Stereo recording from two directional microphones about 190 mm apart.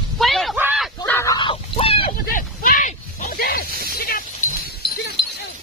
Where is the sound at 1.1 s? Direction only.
15° left (ahead or behind).